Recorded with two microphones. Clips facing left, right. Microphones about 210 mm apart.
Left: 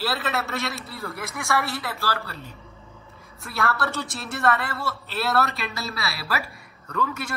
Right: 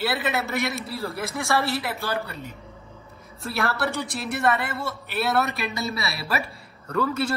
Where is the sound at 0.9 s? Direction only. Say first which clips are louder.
Right 4 dB; 30° right (ahead or behind).